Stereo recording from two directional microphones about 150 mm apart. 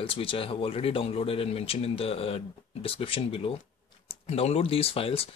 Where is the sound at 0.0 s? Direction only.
35° left (ahead or behind).